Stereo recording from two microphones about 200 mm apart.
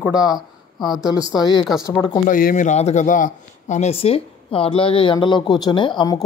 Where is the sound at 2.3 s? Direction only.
45° left (ahead or behind).